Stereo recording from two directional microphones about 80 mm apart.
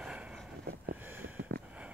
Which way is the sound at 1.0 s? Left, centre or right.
Right.